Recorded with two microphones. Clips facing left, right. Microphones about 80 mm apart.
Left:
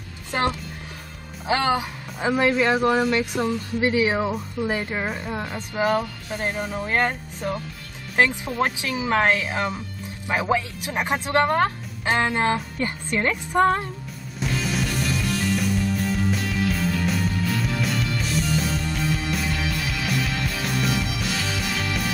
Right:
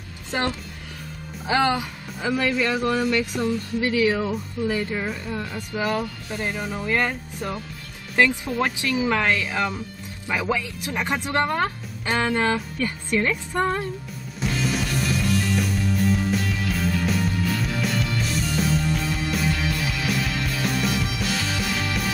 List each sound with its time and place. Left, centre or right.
2.1 s speech: left
5.0 s speech: left
5.3 s speech: left
6.6 s speech: centre
6.9 s speech: left
8.2 s speech: left
14.4 s music: centre